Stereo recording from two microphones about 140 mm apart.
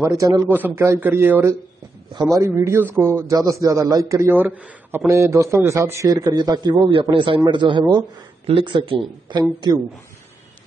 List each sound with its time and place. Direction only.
0.0 s speech: 25° right (ahead or behind)
0.5 s a man's voice: 15° right (ahead or behind); by 9.4 s 35° right (ahead or behind)